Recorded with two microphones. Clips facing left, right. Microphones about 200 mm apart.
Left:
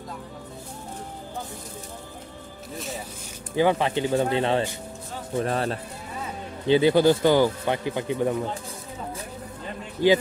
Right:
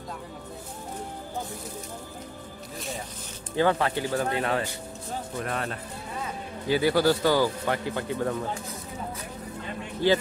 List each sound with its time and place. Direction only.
3.5 s speech: 15° left (ahead or behind); by 5.8 s 30° left (ahead or behind)
6.7 s speech: 20° left (ahead or behind)
10.0 s a man's voice: 15° left (ahead or behind)